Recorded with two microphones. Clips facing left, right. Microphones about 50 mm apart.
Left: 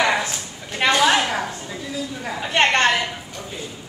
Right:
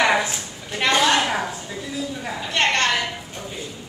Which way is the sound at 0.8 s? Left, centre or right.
Centre.